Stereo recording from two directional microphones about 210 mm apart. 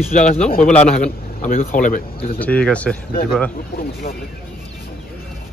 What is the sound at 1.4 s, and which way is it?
Speech, 35° left (ahead or behind).